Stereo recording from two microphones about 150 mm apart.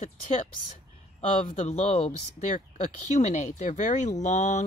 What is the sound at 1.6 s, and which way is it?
Speech, 50° left (ahead or behind).